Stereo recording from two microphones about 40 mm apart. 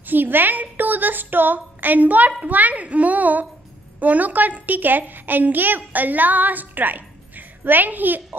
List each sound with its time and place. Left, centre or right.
0.0 s a woman's voice: right